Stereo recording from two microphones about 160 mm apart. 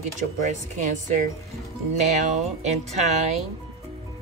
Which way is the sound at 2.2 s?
50° right (ahead or behind).